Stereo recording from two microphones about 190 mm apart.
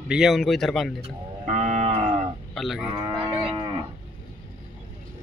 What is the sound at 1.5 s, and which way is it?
Livestock, 40° right (ahead or behind).